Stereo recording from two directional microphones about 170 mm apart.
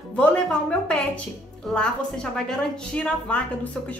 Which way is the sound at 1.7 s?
5° left (ahead or behind).